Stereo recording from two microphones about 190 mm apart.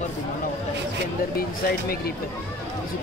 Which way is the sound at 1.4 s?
55° left (ahead or behind).